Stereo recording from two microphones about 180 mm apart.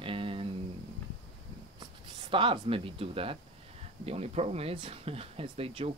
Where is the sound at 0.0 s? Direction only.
30° right (ahead or behind).